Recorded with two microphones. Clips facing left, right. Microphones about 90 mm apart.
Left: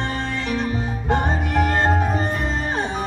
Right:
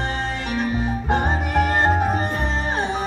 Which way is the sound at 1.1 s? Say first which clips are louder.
Left 1 dB; 15° right (ahead or behind).